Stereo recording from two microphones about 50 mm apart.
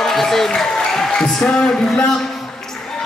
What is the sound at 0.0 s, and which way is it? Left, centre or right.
A man's voice, centre.